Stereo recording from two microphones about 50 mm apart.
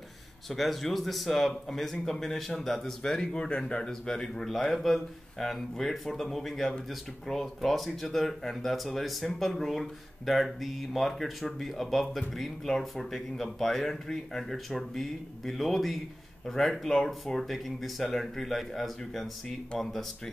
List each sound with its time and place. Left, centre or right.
0.5 s speech: centre